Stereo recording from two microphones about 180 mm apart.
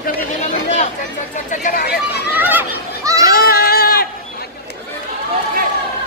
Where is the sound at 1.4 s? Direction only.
55° left (ahead or behind).